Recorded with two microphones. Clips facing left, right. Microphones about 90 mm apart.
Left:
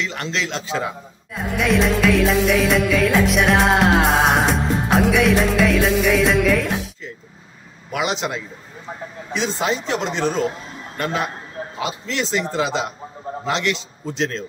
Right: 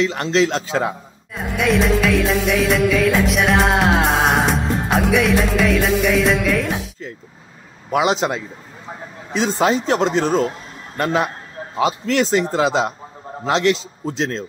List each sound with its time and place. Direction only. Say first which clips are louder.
0.0 s speech: right 8 dB; 35° right (ahead or behind)
1.3 s music: right 1 dB; centre (ahead or behind)
7.9 s speech: right 5 dB; 35° right (ahead or behind)
11.8 s speech: right 8 dB; 50° right (ahead or behind); by 14.4 s 30° right (ahead or behind)